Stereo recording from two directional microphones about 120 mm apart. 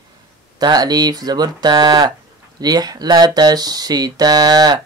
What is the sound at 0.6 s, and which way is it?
Speech, 35° right (ahead or behind).